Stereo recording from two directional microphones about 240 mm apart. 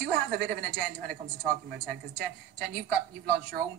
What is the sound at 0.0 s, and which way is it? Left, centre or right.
A woman's voice, right.